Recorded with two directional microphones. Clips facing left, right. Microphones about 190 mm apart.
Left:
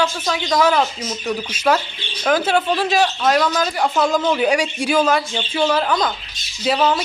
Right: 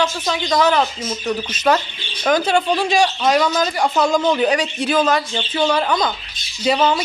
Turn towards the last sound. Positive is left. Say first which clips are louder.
# right 1 dB
turn(degrees=5)  # may be behind; listen again after turning